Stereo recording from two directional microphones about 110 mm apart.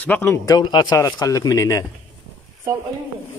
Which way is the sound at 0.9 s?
30° left (ahead or behind).